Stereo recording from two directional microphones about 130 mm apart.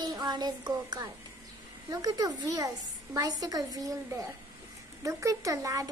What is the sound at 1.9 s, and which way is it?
Speech, 30° right (ahead or behind).